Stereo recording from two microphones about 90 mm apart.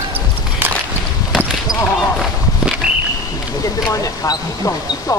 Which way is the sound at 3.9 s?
35° left (ahead or behind).